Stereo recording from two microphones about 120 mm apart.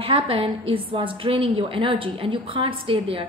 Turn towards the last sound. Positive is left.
turn(degrees=-50)  # may be behind; listen again after turning